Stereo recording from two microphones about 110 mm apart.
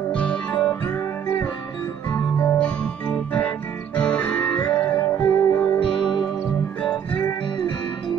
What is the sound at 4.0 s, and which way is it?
Music, 10° left (ahead or behind).